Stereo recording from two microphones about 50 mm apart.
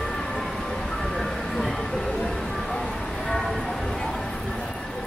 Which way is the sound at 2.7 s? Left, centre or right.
Centre.